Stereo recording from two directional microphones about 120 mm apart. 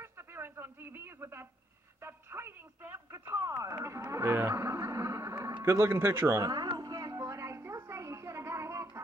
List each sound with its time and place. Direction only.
0.0 s radio: 20° right (ahead or behind)
2.0 s speech: 20° right (ahead or behind)
5.6 s a sound: 20° right (ahead or behind)